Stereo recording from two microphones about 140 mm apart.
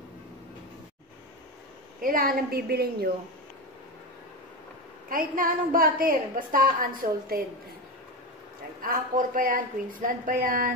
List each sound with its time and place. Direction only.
2.0 s a woman's voice: 85° right
5.1 s a woman's voice: 85° right
8.8 s a woman's voice: 85° right